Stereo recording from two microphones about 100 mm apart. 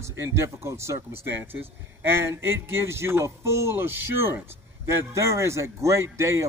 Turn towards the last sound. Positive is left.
turn(degrees=-30)  # may be behind; listen again after turning